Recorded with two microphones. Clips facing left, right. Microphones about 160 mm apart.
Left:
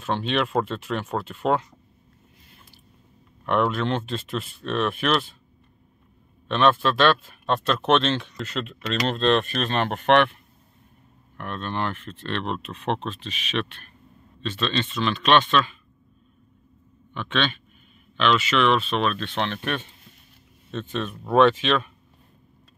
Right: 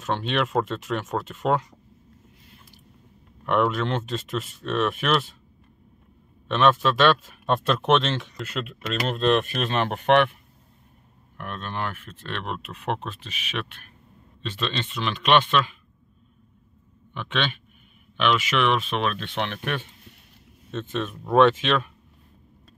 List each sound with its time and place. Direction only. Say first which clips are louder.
0.3 s speech: even; centre (ahead or behind)
3.4 s speech: even; 10° right (ahead or behind)
6.5 s speech: even; 5° right (ahead or behind)
11.3 s speech: left 3 dB; 10° right (ahead or behind)
17.1 s speech: left 2 dB; 10° right (ahead or behind)
20.9 s speech: even; 5° right (ahead or behind)